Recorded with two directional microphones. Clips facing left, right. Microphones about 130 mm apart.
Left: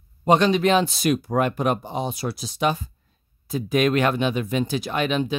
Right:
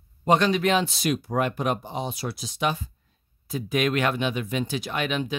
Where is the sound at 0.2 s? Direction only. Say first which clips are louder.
Left 3 dB; 20° left (ahead or behind).